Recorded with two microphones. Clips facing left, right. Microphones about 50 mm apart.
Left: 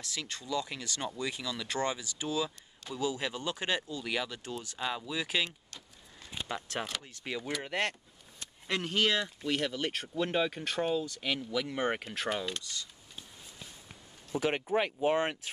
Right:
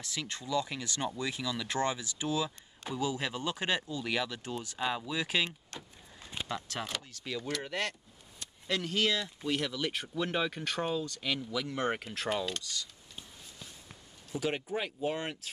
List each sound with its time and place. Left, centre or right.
0.0 s speech: centre
1.2 s speech: centre
2.9 s speech: centre
4.4 s speech: centre
4.9 s speech: centre
6.4 s speech: left
8.4 s a sound: left
9.0 s speech: left
10.0 s speech: centre
12.4 s speech: centre
14.3 s speech: left